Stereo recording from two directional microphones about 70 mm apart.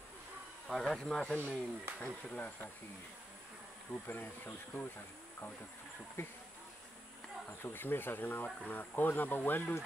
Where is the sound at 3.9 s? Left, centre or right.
Left.